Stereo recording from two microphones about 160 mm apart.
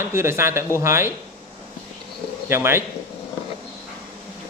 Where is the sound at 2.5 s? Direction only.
15° right (ahead or behind).